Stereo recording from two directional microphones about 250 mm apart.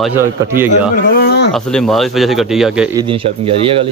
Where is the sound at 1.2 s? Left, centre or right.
Left.